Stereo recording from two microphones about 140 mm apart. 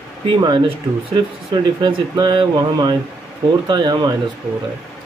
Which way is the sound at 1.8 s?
30° right (ahead or behind).